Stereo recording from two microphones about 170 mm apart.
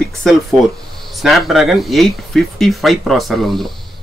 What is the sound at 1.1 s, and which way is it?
Speech, centre (ahead or behind).